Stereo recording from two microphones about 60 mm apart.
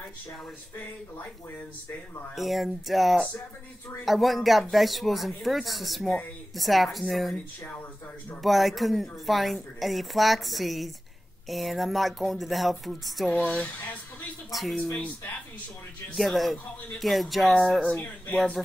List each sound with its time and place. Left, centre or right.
2.3 s a woman's voice: centre
8.4 s a woman's voice: centre
13.3 s speech: left
14.5 s a woman's voice: centre
16.2 s a woman's voice: centre
17.6 s speech: centre